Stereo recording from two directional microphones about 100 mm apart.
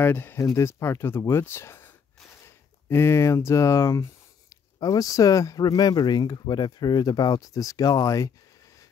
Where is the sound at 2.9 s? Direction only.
25° left (ahead or behind).